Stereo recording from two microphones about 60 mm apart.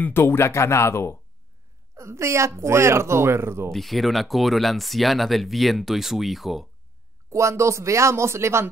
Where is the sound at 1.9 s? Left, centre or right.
Right.